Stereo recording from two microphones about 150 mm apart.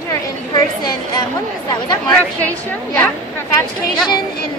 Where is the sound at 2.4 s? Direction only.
10° left (ahead or behind).